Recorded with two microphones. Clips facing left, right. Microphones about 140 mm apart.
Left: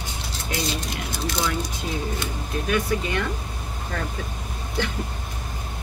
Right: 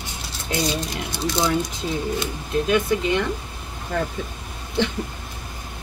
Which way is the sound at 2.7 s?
20° right (ahead or behind).